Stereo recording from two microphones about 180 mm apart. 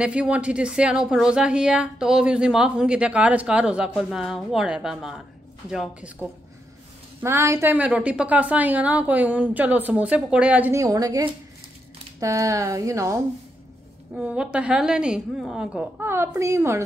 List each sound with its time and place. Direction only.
0.0 s a woman's voice: 5° right (ahead or behind)
14.1 s a woman's voice: 5° right (ahead or behind)